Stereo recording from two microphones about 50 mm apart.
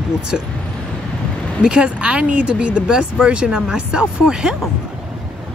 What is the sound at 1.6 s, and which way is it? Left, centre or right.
Speech, right.